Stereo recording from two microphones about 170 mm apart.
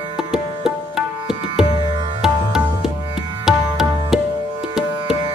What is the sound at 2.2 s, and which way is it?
Music, 5° right (ahead or behind).